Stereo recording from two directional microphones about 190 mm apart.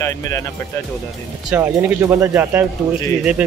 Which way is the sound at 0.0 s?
15° left (ahead or behind).